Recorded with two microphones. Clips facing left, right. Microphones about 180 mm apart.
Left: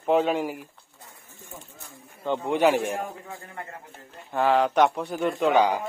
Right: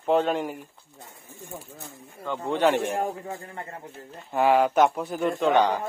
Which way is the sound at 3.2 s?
40° right (ahead or behind).